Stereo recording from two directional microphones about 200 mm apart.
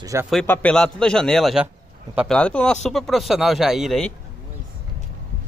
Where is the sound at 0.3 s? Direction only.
5° left (ahead or behind).